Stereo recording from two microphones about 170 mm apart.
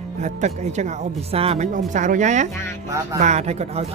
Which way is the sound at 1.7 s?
50° right (ahead or behind).